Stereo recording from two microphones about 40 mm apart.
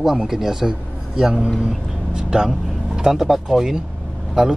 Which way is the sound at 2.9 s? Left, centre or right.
Centre.